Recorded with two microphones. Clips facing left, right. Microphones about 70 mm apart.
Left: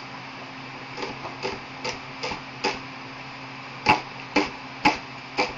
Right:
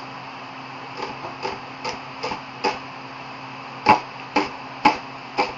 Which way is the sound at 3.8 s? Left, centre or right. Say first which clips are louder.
Right 5 dB; right.